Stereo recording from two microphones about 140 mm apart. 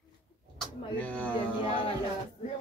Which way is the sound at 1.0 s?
10° left (ahead or behind).